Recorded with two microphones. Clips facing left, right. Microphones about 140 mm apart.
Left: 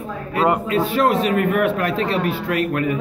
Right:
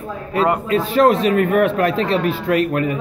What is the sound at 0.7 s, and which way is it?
Speech, 30° right (ahead or behind).